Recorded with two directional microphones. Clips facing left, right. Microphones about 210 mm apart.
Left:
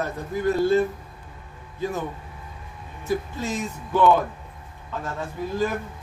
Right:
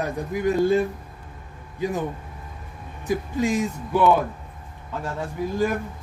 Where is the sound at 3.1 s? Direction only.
15° right (ahead or behind).